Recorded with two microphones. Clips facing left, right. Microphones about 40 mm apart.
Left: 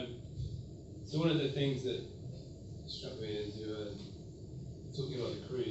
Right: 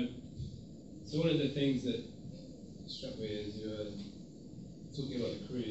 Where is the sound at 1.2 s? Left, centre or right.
Centre.